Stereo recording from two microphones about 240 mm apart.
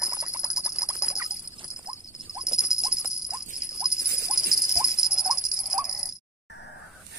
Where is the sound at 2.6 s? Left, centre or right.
Centre.